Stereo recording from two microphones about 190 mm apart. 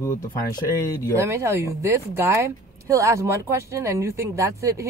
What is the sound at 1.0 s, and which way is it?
Speech, 15° right (ahead or behind).